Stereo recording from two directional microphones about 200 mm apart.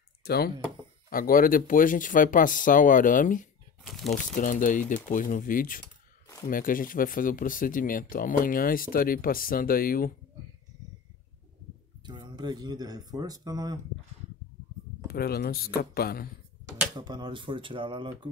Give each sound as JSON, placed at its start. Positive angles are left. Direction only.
{"t": 0.2, "sound": "a sound", "side_deg": 50}
{"t": 1.1, "sound": "speech", "side_deg": 45}
{"t": 3.8, "sound": "speech", "side_deg": 0}
{"t": 4.4, "sound": "speech", "side_deg": 40}
{"t": 12.0, "sound": "speech", "side_deg": -20}
{"t": 15.0, "sound": "speech", "side_deg": 50}
{"t": 16.9, "sound": "speech", "side_deg": -20}